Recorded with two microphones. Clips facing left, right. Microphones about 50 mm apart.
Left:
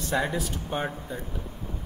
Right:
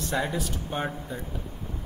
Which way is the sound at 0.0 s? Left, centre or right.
Centre.